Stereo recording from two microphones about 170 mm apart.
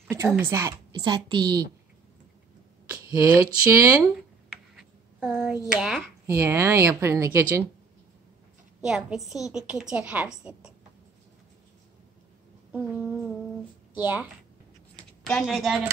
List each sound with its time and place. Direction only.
0.4 s a woman's voice: 15° right (ahead or behind)
2.9 s speech: 20° right (ahead or behind)
4.0 s writing: centre (ahead or behind)
5.7 s a woman's voice: 5° right (ahead or behind)
6.2 s a woman's voice: 15° right (ahead or behind)
8.8 s a woman's voice: 5° right (ahead or behind)
12.7 s a woman's voice: 10° right (ahead or behind)
15.0 s speech: 5° left (ahead or behind)